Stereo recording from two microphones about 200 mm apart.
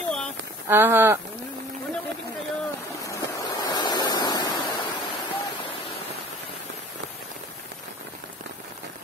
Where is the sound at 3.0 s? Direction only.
15° left (ahead or behind).